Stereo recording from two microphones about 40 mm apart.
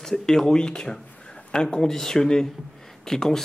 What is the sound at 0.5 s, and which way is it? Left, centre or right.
Speech, centre.